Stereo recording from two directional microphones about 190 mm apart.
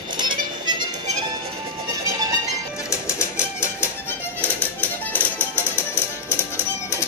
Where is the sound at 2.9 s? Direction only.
15° left (ahead or behind).